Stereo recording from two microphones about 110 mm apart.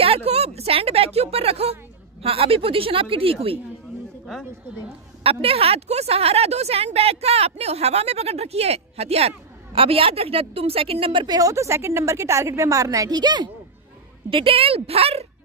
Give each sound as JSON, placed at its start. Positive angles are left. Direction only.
{"t": 0.0, "sound": "speech", "side_deg": -65}
{"t": 5.2, "sound": "a woman's voice", "side_deg": -60}
{"t": 11.2, "sound": "a woman's voice", "side_deg": -35}
{"t": 14.3, "sound": "speech", "side_deg": -55}